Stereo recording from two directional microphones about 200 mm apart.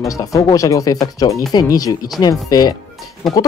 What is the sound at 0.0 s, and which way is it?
Speech, 15° left (ahead or behind).